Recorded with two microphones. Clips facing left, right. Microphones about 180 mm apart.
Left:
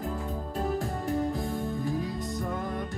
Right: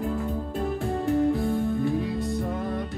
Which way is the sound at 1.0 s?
40° left (ahead or behind).